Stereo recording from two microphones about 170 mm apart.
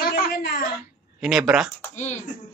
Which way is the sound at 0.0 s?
60° left (ahead or behind).